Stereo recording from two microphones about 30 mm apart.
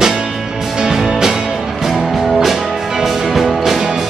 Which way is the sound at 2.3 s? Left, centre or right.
Centre.